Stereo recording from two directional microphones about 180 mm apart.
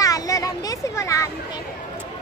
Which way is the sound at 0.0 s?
20° left (ahead or behind).